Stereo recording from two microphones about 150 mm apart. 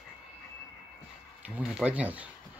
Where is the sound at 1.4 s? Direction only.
10° right (ahead or behind).